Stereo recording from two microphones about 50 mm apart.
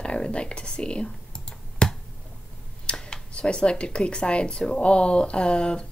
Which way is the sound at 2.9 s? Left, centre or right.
Centre.